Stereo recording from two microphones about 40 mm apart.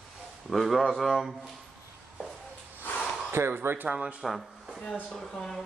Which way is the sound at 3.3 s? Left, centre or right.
Right.